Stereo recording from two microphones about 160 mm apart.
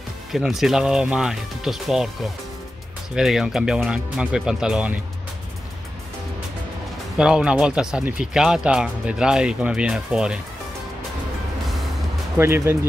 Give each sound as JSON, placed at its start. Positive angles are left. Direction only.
{"t": 0.3, "sound": "speech", "side_deg": 0}
{"t": 3.2, "sound": "speech", "side_deg": -5}
{"t": 7.2, "sound": "speech", "side_deg": -5}
{"t": 12.4, "sound": "speech", "side_deg": -15}